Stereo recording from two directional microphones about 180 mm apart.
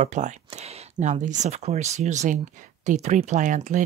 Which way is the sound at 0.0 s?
40° right (ahead or behind).